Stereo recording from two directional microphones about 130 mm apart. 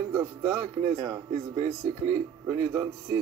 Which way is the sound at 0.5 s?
55° right (ahead or behind).